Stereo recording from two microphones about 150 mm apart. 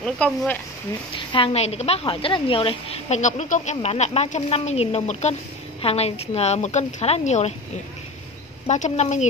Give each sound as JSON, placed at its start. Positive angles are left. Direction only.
{"t": 0.0, "sound": "speech", "side_deg": 5}
{"t": 1.1, "sound": "a woman's voice", "side_deg": 35}
{"t": 8.6, "sound": "a woman's voice", "side_deg": 50}